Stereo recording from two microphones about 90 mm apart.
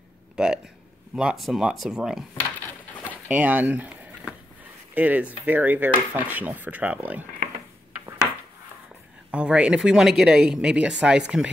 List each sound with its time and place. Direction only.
0.4 s speech: 10° right (ahead or behind)
3.3 s speech: 20° right (ahead or behind)
4.9 s speech: 20° right (ahead or behind)
9.3 s speech: 15° right (ahead or behind)